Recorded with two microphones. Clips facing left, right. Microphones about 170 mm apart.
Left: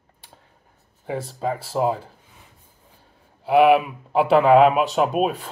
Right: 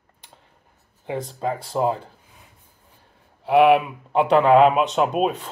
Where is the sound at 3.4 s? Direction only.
Centre (ahead or behind).